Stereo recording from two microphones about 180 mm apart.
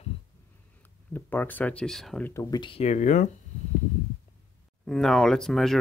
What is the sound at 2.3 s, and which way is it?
Speech, 20° left (ahead or behind).